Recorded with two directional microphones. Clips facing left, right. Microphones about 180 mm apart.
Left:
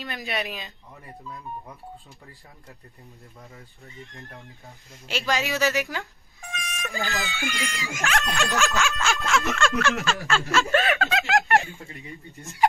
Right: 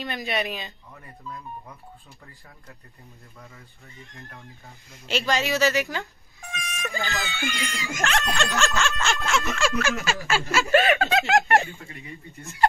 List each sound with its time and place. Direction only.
0.0 s speech: centre (ahead or behind)
5.0 s speech: 5° left (ahead or behind)
11.9 s speech: 20° left (ahead or behind)